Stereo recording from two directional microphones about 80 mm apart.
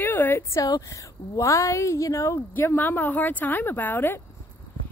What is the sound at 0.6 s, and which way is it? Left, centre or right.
A woman's voice, left.